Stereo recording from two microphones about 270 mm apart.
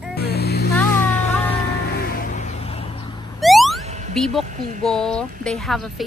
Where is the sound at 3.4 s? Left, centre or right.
Centre.